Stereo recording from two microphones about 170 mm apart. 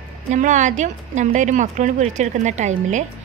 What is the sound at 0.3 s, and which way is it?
A woman's voice, 45° right (ahead or behind).